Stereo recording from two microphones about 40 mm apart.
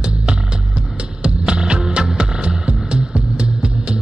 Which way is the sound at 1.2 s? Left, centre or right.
Right.